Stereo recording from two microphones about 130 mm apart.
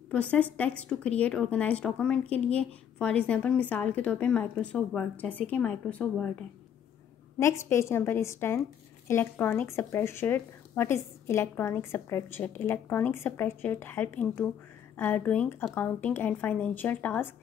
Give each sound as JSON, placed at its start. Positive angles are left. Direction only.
{"t": 0.1, "sound": "a woman's voice", "side_deg": 10}
{"t": 7.3, "sound": "a woman's voice", "side_deg": 20}